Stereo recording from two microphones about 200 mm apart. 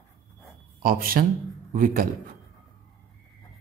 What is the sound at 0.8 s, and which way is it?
Speech, 45° right (ahead or behind).